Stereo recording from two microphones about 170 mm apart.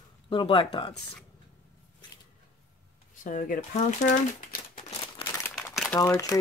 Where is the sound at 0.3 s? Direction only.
30° left (ahead or behind).